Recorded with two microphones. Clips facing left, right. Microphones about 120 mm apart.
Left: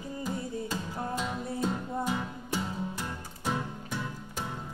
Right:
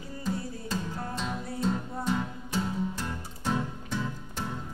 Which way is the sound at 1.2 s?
10° left (ahead or behind).